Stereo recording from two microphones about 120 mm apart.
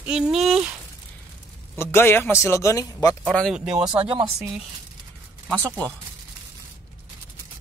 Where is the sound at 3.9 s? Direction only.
45° right (ahead or behind).